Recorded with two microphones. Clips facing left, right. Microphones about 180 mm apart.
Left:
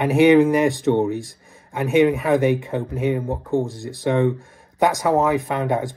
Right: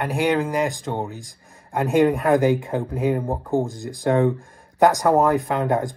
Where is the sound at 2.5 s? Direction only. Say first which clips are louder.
Even; 70° left (ahead or behind).